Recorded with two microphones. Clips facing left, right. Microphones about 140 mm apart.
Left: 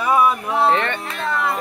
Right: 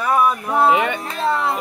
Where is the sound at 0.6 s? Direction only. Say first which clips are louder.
Right 2 dB; 10° right (ahead or behind).